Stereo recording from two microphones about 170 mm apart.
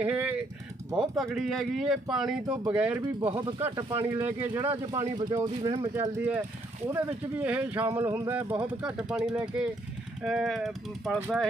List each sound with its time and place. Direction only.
0.0 s typing: 10° right (ahead or behind)
0.9 s speech: centre (ahead or behind)
3.0 s speech: 30° right (ahead or behind)
3.9 s speech: 15° right (ahead or behind)
6.1 s speech: 10° right (ahead or behind)